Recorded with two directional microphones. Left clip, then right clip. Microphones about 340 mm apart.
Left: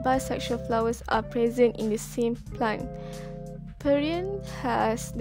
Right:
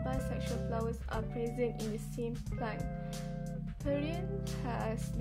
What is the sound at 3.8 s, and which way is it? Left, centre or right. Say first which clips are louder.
Speech: left 12 dB; left.